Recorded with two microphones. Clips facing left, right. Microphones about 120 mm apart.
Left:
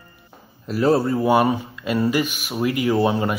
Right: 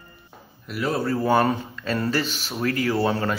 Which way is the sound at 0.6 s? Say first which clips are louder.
Left 8 dB; 35° left (ahead or behind).